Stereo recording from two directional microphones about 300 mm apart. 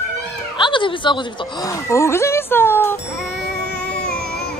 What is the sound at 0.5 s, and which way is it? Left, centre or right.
Speech, centre.